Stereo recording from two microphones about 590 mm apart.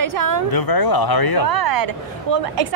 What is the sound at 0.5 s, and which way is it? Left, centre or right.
Speech, left.